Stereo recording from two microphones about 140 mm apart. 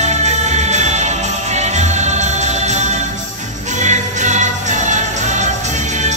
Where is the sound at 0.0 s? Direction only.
55° right (ahead or behind).